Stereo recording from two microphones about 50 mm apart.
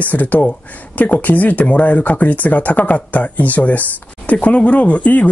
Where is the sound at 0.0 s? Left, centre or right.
Left.